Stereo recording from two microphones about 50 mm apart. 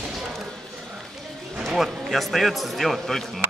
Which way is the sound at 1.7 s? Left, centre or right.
Centre.